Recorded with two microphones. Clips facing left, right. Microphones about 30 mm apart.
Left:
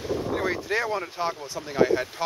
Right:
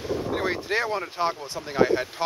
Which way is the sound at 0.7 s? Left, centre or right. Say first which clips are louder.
Right 1 dB; right.